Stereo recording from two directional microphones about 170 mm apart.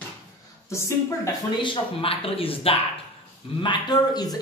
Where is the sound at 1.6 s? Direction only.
30° left (ahead or behind).